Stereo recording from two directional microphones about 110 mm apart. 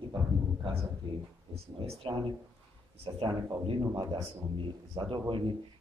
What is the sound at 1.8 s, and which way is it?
Speech, 50° right (ahead or behind).